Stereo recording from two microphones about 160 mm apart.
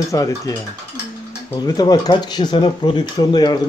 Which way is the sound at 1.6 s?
25° left (ahead or behind).